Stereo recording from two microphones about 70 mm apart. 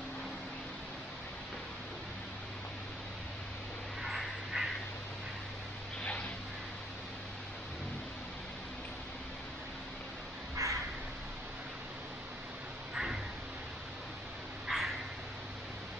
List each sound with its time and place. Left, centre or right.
4.0 s duck: centre
10.6 s crow: right
12.9 s a sound: centre
14.7 s dog: centre